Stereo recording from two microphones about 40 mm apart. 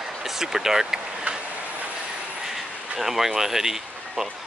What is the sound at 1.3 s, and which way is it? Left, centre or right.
Train, right.